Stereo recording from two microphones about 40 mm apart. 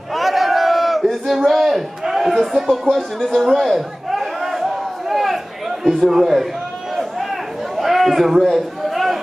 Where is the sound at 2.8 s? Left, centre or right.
Centre.